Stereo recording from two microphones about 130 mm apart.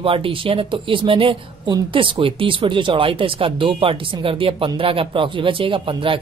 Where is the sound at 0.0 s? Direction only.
45° right (ahead or behind).